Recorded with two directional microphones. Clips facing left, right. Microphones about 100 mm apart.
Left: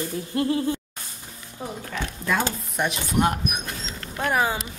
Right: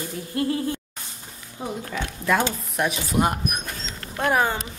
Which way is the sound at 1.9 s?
5° right (ahead or behind).